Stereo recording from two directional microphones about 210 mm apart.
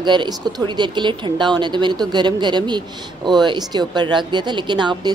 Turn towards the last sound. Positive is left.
turn(degrees=-20)  # may be behind; listen again after turning